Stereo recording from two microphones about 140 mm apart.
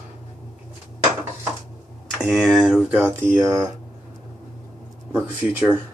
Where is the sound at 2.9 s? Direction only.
15° right (ahead or behind).